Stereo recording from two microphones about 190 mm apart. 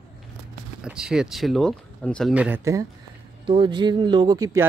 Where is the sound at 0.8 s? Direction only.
5° right (ahead or behind).